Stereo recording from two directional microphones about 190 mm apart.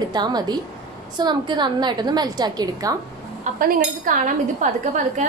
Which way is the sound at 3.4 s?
40° right (ahead or behind).